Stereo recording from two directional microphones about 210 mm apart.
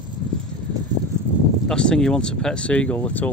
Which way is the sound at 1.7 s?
5° left (ahead or behind).